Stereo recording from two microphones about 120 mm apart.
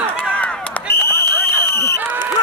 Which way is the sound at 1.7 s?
25° left (ahead or behind).